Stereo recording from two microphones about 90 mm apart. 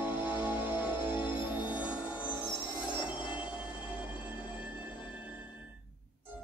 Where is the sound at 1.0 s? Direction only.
60° left (ahead or behind).